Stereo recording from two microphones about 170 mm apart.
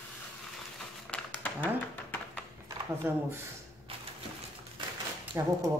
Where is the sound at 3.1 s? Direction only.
10° right (ahead or behind).